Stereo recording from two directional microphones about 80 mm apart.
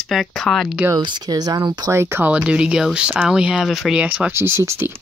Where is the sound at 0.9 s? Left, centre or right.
Right.